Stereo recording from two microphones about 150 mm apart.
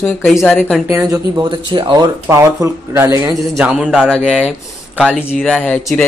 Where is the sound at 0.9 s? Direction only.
20° right (ahead or behind).